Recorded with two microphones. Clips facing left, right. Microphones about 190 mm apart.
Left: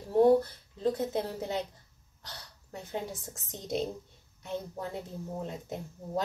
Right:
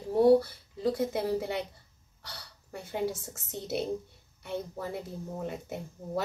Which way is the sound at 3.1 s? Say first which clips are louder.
Right 5 dB; 85° right.